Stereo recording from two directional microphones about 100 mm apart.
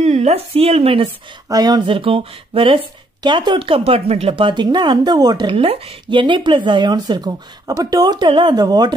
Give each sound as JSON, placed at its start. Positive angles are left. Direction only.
{"t": 0.0, "sound": "speech", "side_deg": -90}
{"t": 1.5, "sound": "speech", "side_deg": -40}
{"t": 1.9, "sound": "speech", "side_deg": -65}
{"t": 3.2, "sound": "speech", "side_deg": -50}
{"t": 4.6, "sound": "speech", "side_deg": -45}
{"t": 5.5, "sound": "speech", "side_deg": -65}
{"t": 8.3, "sound": "speech", "side_deg": -55}